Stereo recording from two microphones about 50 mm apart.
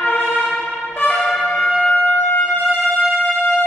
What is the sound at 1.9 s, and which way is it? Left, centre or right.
Music, left.